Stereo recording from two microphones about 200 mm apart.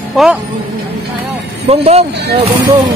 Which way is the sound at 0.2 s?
Centre (ahead or behind).